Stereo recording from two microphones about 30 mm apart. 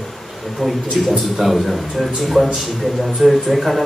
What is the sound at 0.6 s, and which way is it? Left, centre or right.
A man's voice, centre.